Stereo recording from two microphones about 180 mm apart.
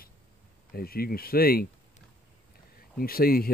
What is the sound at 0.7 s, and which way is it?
Speech, 55° left (ahead or behind).